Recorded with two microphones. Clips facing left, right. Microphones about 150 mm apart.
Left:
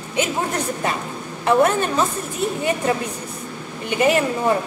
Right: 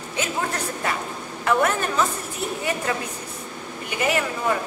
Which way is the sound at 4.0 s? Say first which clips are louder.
Left 6 dB; 25° left (ahead or behind).